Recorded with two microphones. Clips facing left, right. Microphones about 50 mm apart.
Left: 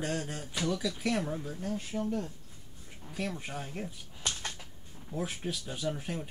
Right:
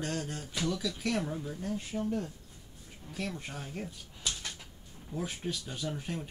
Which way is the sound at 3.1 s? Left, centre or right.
Centre.